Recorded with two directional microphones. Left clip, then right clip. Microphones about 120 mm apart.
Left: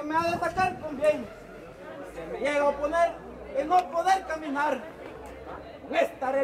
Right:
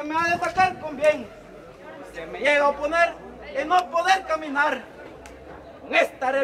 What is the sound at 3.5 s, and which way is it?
A man's voice, 5° left (ahead or behind).